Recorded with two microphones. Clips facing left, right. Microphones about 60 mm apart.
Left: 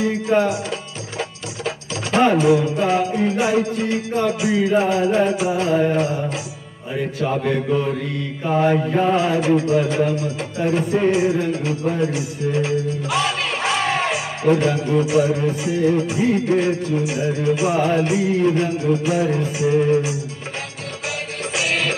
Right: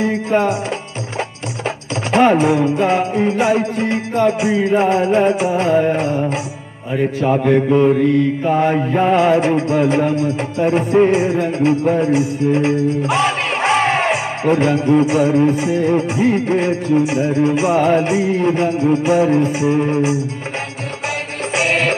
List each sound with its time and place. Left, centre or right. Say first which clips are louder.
0.0 s music: right 2 dB; right
2.0 s music: right 2 dB; right
7.2 s mantra: right 7 dB; right
8.5 s music: left 1 dB; right
19.6 s mantra: right 1 dB; right
21.5 s music: right 5 dB; right